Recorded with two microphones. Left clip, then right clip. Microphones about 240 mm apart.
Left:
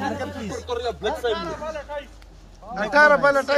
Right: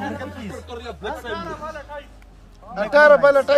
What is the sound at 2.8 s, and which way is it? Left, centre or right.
Speech, right.